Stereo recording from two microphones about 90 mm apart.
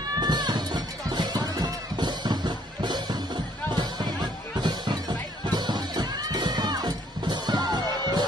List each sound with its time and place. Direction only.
0.2 s music: 55° right (ahead or behind)